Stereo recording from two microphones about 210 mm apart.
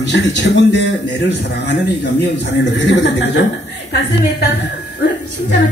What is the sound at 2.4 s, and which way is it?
A man's voice, 55° left (ahead or behind).